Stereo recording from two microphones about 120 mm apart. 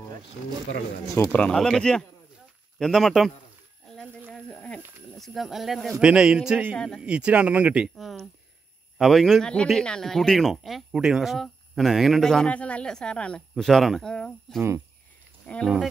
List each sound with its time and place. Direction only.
1.3 s a man's voice: 10° left (ahead or behind)
4.5 s a man's voice: 10° left (ahead or behind); by 6.7 s 10° right (ahead or behind)
6.7 s speech: 5° left (ahead or behind)
7.0 s speech: 10° right (ahead or behind)
7.9 s a man's voice: centre (ahead or behind)